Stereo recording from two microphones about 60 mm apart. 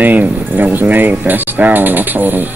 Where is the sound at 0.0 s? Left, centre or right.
Right.